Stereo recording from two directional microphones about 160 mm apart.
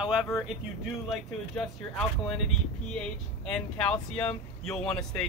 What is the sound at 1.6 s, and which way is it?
Speech, 5° left (ahead or behind).